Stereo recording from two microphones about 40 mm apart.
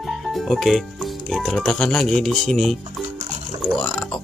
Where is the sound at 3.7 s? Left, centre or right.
Centre.